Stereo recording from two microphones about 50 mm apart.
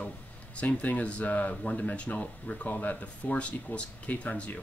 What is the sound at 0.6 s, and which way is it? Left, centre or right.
Speech, left.